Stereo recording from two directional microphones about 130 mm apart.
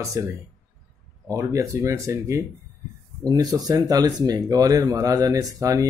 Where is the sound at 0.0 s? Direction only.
25° right (ahead or behind).